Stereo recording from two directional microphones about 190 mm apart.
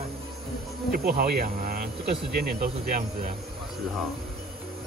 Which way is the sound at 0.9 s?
50° right (ahead or behind).